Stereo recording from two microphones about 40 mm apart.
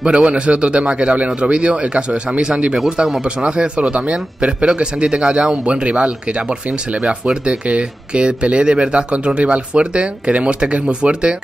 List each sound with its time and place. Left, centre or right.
0.0 s speech: right
7.4 s speech: right